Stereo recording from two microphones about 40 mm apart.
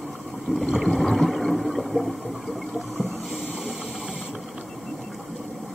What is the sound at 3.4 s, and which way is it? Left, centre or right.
Hiss, centre.